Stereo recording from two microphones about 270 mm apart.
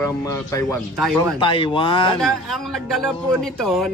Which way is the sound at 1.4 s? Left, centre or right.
Centre.